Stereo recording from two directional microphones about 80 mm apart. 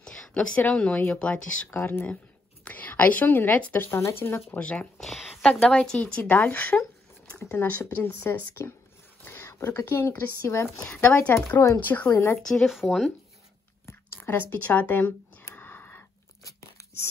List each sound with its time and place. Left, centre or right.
0.0 s speech: centre
1.7 s a woman's voice: left
4.6 s speech: centre
5.4 s a woman's voice: centre
6.8 s a sound: centre
7.5 s speech: left
10.8 s speech: centre
12.4 s speech: centre
13.8 s a sound: left
16.4 s crunch: left